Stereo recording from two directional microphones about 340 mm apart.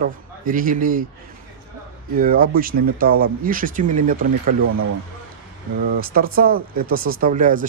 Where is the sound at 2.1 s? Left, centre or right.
Right.